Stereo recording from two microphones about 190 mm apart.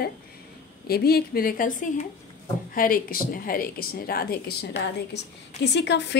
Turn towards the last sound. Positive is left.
turn(degrees=65)  # may be behind; listen again after turning